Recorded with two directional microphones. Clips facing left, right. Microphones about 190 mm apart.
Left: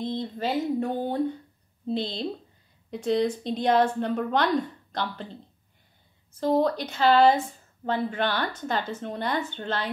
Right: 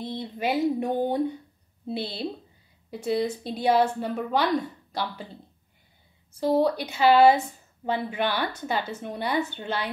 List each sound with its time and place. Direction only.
0.0 s a woman's voice: 10° right (ahead or behind)
6.4 s a woman's voice: 10° right (ahead or behind)